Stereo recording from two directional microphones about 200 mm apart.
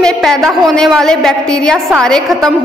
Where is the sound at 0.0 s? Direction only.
Centre (ahead or behind).